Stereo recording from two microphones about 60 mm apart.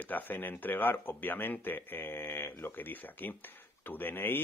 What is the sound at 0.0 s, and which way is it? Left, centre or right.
Speech, left.